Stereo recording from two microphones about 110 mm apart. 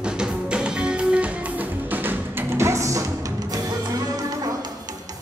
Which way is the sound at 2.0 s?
25° right (ahead or behind).